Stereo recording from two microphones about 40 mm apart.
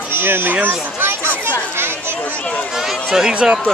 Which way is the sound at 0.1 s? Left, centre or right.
Right.